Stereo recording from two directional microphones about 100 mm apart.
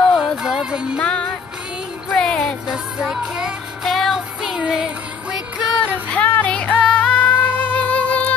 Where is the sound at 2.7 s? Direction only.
10° right (ahead or behind).